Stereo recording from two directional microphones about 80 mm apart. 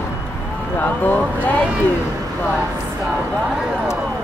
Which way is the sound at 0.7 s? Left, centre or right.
Left.